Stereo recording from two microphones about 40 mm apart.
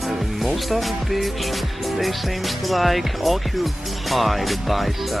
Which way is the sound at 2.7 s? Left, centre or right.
Centre.